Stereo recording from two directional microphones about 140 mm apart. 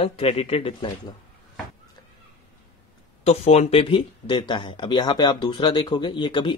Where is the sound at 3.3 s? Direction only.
50° left (ahead or behind).